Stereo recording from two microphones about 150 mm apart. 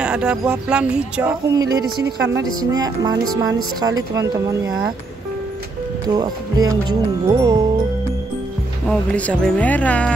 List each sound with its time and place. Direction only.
0.0 s speech: 5° right (ahead or behind)
1.5 s speech: 25° right (ahead or behind)
6.0 s speech: 25° right (ahead or behind)
8.8 s speech: 10° left (ahead or behind)